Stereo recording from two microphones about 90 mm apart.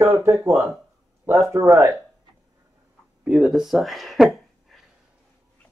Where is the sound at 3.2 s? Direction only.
10° right (ahead or behind).